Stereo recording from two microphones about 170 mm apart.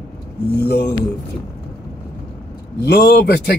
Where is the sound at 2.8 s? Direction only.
70° left (ahead or behind).